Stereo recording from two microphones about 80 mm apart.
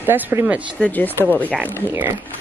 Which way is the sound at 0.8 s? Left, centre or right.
Left.